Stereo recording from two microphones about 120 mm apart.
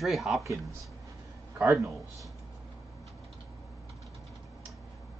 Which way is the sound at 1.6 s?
20° right (ahead or behind).